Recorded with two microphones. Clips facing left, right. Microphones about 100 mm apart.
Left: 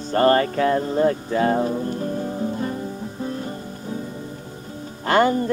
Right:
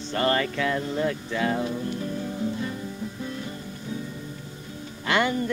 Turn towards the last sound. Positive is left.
turn(degrees=40)  # may be behind; listen again after turning